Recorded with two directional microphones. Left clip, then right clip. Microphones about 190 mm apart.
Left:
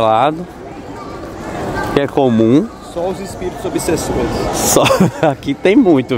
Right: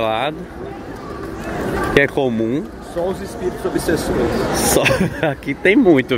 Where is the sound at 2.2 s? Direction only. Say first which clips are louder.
Left 7 dB; 25° left (ahead or behind).